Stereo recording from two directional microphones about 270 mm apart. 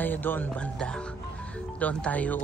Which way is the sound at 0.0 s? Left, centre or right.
Centre.